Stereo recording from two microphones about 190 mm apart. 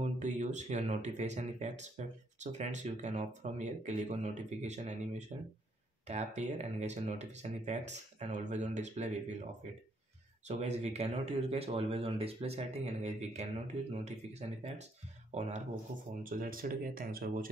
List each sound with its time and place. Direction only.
0.0 s speech: 40° right (ahead or behind)
10.5 s speech: 35° right (ahead or behind)
16.2 s speech: 45° right (ahead or behind)